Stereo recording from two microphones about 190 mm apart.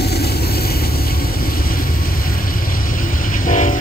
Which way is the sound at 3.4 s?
45° left (ahead or behind).